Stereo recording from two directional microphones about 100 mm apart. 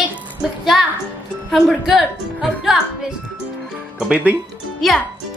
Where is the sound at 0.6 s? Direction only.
Centre (ahead or behind).